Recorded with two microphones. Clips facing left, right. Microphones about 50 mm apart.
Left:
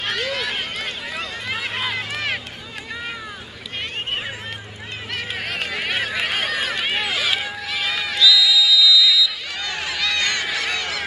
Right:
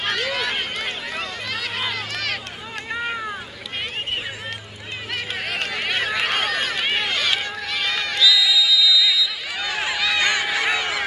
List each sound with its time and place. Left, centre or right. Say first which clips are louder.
0.0 s run: right 1 dB; centre
2.0 s run: left 2 dB; centre
5.1 s run: even; centre